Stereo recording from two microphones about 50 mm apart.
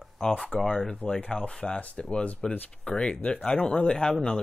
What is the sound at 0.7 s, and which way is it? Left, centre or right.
Speech, centre.